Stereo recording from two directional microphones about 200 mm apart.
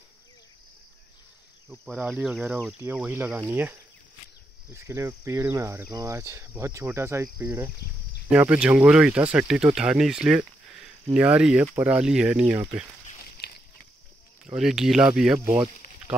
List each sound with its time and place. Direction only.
1.7 s speech: centre (ahead or behind)
4.7 s speech: 15° right (ahead or behind)
13.4 s walk: 55° left (ahead or behind)
14.4 s speech: 5° right (ahead or behind)